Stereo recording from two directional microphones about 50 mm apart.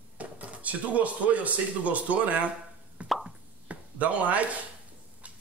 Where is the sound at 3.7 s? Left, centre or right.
Right.